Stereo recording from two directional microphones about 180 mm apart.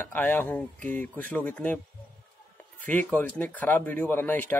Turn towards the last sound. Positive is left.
turn(degrees=10)  # may be behind; listen again after turning